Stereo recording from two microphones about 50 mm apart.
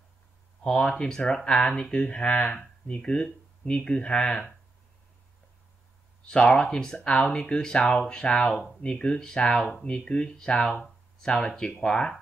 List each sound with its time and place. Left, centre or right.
0.7 s speech: centre
2.0 s speech: left
6.2 s speech: left